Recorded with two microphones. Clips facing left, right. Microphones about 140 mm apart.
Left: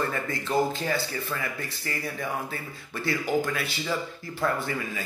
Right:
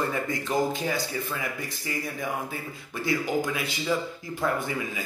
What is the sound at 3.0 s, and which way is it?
Speech, 15° right (ahead or behind).